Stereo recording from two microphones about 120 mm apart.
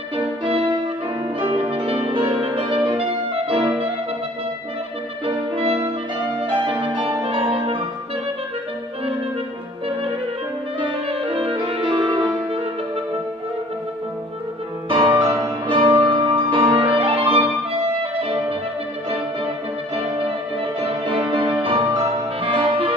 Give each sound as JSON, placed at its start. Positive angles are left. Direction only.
{"t": 0.5, "sound": "music", "side_deg": -50}
{"t": 5.2, "sound": "music", "side_deg": -55}
{"t": 11.1, "sound": "music", "side_deg": -50}
{"t": 14.9, "sound": "music", "side_deg": -40}
{"t": 21.1, "sound": "music", "side_deg": -35}